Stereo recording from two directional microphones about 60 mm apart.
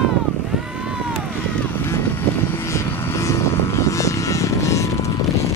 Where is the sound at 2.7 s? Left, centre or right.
Left.